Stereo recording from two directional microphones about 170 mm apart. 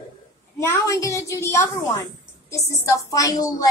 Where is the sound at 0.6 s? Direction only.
15° left (ahead or behind).